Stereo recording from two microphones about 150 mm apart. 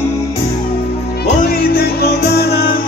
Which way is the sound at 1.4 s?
90° left.